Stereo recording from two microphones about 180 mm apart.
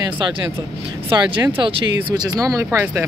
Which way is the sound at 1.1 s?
25° right (ahead or behind).